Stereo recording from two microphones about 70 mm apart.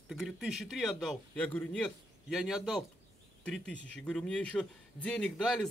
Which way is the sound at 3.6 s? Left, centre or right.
Centre.